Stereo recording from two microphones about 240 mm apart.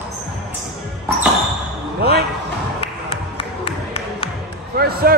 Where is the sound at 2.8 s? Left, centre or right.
Left.